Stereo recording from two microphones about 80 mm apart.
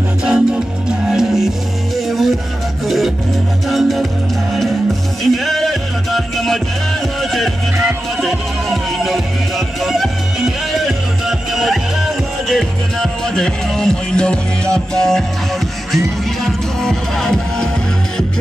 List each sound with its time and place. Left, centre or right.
0.2 s music: centre
3.6 s music: centre
5.2 s music: centre
16.4 s music: centre